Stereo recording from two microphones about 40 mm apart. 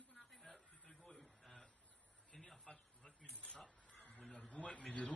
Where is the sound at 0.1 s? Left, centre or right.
Centre.